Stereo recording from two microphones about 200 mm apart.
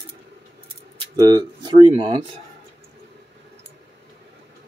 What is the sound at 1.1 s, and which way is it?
Speech, 20° right (ahead or behind).